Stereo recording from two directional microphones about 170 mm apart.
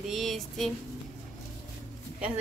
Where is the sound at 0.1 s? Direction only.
Centre (ahead or behind).